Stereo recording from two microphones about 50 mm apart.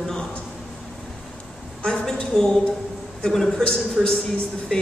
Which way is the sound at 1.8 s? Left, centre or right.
Centre.